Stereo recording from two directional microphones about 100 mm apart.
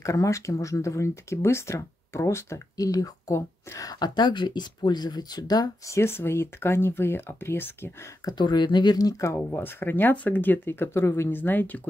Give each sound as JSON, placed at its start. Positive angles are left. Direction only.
{"t": 0.0, "sound": "speech", "side_deg": 30}
{"t": 5.9, "sound": "speech", "side_deg": 25}
{"t": 8.3, "sound": "speech", "side_deg": 45}
{"t": 9.5, "sound": "speech", "side_deg": 20}